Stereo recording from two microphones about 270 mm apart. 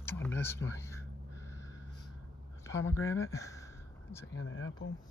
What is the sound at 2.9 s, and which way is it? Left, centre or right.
Speech, centre.